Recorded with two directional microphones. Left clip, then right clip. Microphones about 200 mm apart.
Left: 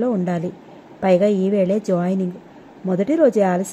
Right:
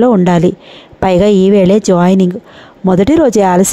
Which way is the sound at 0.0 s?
50° right (ahead or behind).